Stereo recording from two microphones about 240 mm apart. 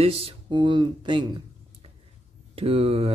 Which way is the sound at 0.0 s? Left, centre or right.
Right.